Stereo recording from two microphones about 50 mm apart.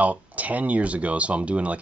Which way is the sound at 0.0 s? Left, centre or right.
Right.